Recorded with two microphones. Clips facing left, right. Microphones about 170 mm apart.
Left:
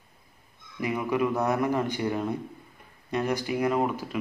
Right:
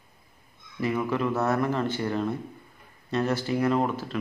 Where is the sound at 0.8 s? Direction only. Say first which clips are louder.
Even; 15° left (ahead or behind).